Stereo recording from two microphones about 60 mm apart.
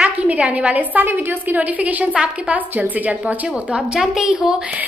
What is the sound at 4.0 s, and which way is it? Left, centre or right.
Speech, centre.